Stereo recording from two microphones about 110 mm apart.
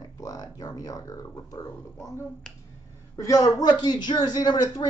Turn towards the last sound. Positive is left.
turn(degrees=40)  # may be behind; listen again after turning